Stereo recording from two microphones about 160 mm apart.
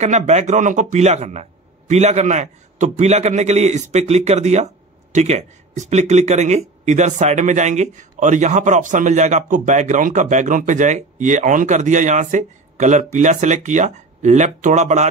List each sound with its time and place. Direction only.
0.0 s speech: 45° right (ahead or behind)